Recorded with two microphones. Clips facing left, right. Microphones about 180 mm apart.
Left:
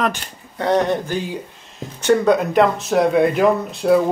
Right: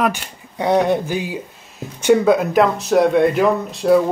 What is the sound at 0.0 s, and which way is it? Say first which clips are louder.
Speech: right 2 dB; 10° right (ahead or behind).